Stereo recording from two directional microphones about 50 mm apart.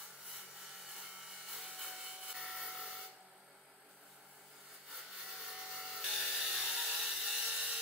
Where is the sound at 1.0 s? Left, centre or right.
Centre.